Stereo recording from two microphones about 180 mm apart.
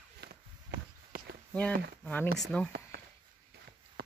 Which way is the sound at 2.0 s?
10° left (ahead or behind).